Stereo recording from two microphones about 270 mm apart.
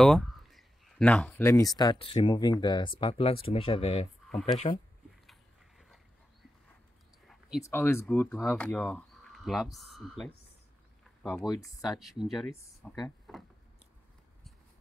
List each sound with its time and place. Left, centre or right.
0.0 s speech: centre; by 4.1 s left
4.3 s speech: centre
5.2 s a sound: centre
7.2 s a sound: centre
7.6 s speech: centre
11.4 s speech: centre
12.0 s speech: centre